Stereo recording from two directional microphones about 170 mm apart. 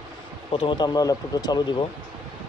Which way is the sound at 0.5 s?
30° left (ahead or behind).